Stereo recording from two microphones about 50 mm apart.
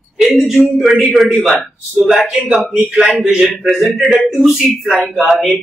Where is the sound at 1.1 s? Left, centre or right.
Centre.